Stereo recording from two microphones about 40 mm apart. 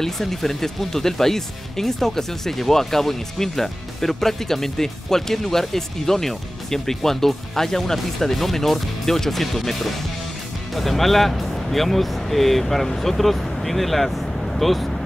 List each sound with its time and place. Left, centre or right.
0.0 s speech: centre